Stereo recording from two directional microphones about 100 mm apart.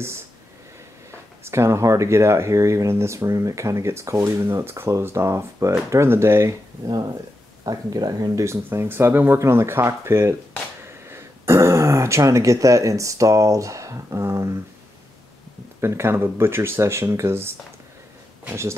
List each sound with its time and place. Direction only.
1.4 s speech: 25° right (ahead or behind)
6.8 s speech: 45° right (ahead or behind)
8.6 s speech: 20° right (ahead or behind)
15.8 s speech: 25° right (ahead or behind)